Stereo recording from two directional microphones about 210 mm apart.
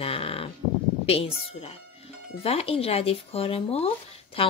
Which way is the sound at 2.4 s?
30° left (ahead or behind).